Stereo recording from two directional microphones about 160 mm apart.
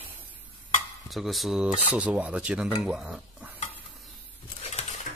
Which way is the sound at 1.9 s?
10° right (ahead or behind).